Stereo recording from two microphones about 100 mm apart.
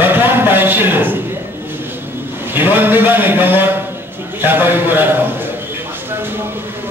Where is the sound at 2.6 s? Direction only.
20° right (ahead or behind).